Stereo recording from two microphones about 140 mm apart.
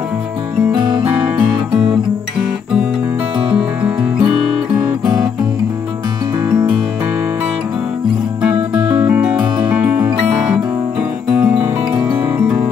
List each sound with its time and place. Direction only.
3.5 s music: 10° right (ahead or behind)
8.7 s music: 30° right (ahead or behind)
9.0 s music: 10° right (ahead or behind)
11.4 s music: 10° right (ahead or behind)